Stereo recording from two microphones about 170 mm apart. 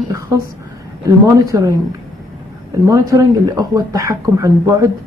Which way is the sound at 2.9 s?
20° right (ahead or behind).